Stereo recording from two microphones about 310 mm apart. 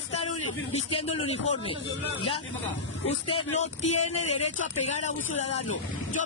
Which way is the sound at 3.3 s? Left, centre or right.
Left.